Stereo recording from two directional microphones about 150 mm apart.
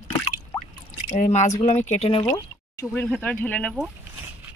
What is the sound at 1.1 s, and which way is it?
Speech, 50° left (ahead or behind).